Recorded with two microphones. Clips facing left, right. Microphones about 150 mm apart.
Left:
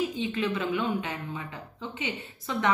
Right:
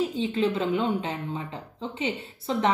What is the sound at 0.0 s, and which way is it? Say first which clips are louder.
Speech: right 4 dB; 35° right (ahead or behind).